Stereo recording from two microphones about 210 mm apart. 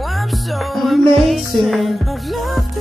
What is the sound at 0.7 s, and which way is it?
Music, centre (ahead or behind).